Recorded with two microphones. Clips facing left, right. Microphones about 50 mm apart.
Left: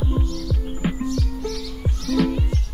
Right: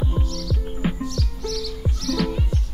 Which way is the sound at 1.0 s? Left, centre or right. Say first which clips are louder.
Left 4 dB; right.